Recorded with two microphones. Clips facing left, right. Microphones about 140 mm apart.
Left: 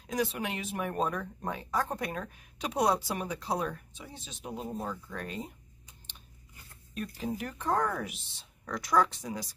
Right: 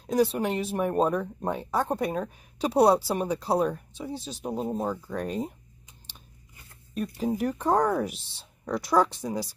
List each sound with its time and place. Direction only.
0.0 s speech: 30° right (ahead or behind)
6.9 s a sound: centre (ahead or behind)
7.2 s speech: 40° right (ahead or behind)